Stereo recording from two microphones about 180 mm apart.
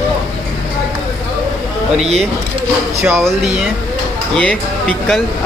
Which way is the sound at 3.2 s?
5° right (ahead or behind).